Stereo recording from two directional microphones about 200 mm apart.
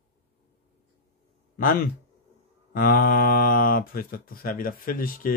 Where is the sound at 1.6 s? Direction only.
45° left (ahead or behind).